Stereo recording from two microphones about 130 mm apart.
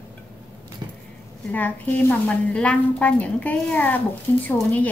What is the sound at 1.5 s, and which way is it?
A woman's voice, 10° left (ahead or behind).